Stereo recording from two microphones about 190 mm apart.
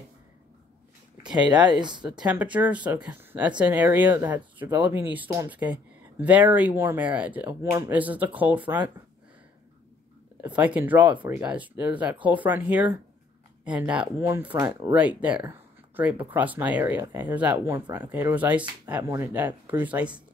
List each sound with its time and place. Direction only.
1.8 s speech: 25° right (ahead or behind)
2.3 s speech: 10° right (ahead or behind)
10.4 s speech: 10° right (ahead or behind)